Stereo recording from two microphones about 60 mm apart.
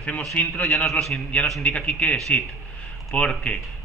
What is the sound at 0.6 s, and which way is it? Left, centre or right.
Speech, centre.